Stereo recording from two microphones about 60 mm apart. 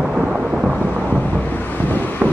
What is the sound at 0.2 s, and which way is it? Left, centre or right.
Thunder, centre.